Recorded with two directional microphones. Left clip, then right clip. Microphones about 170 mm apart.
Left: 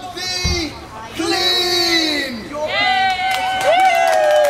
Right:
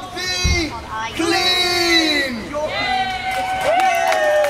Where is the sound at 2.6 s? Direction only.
25° left (ahead or behind).